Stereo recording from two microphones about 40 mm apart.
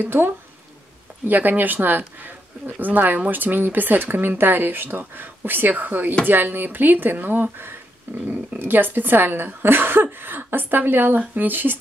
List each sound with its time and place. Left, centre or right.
0.0 s speech: right
1.2 s speech: right